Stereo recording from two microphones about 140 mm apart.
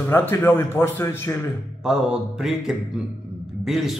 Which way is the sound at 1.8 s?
5° right (ahead or behind).